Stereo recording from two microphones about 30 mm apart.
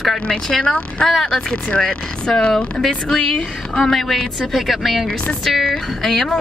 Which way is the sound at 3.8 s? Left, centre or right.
Centre.